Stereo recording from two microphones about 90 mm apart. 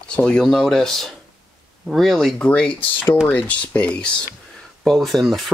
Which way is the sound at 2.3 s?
15° left (ahead or behind).